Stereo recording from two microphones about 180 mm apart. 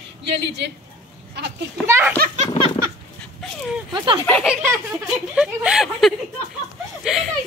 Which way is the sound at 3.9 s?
25° right (ahead or behind).